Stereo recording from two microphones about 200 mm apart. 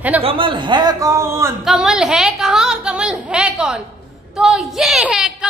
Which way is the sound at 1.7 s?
5° right (ahead or behind).